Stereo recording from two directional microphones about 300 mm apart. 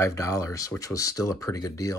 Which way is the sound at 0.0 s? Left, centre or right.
Centre.